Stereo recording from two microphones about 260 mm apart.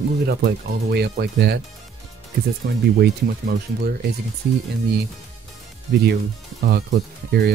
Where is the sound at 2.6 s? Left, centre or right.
Right.